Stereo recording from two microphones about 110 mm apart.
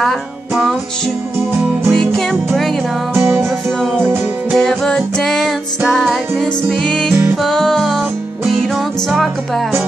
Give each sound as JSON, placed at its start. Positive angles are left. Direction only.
{"t": 1.9, "sound": "music", "side_deg": 0}
{"t": 3.2, "sound": "music", "side_deg": -20}
{"t": 4.5, "sound": "music", "side_deg": 5}